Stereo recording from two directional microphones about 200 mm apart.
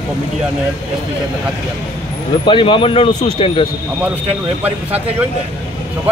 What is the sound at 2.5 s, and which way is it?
Speech, 25° left (ahead or behind).